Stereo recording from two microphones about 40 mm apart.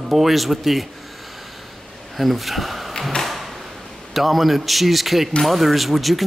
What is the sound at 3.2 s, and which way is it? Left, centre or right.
Drawer open or close, centre.